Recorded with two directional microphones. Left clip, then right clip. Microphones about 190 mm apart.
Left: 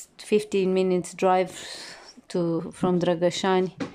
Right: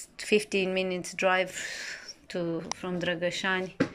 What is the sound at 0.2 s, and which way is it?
Speech, 20° left (ahead or behind).